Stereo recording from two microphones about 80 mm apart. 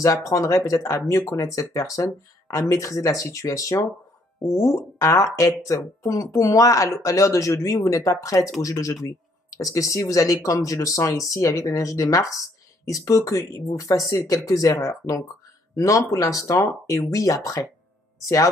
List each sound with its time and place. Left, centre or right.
0.0 s speech: left